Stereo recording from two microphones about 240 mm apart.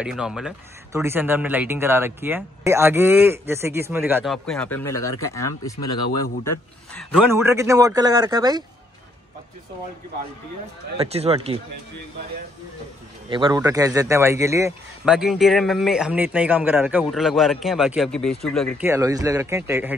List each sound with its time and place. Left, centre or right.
0.0 s speech: centre
6.4 s a man's voice: centre
7.2 s speech: centre
11.0 s speech: right
13.3 s speech: centre
15.1 s a man's voice: centre
18.9 s speech: centre